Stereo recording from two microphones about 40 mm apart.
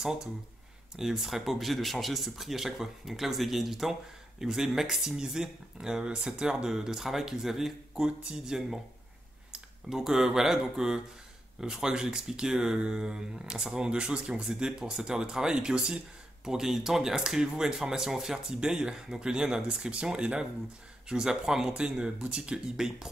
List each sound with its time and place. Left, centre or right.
0.0 s speech: centre
7.9 s speech: right